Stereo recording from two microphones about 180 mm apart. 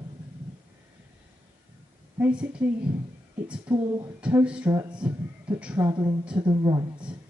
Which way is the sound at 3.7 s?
20° right (ahead or behind).